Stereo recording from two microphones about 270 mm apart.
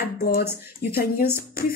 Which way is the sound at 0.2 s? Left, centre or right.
Left.